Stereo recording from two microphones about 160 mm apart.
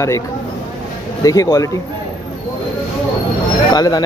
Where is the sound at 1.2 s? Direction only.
20° left (ahead or behind).